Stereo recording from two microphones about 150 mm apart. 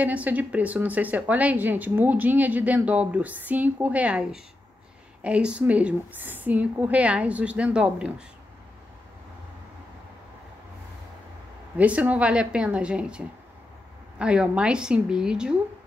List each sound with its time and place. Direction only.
0.0 s a woman's voice: 10° right (ahead or behind)
11.7 s a woman's voice: 10° right (ahead or behind)